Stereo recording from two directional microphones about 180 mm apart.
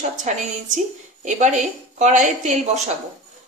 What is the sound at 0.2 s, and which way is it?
A woman's voice, 40° right (ahead or behind).